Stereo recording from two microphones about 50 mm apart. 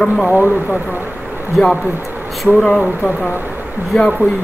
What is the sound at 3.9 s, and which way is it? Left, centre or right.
Speech, centre.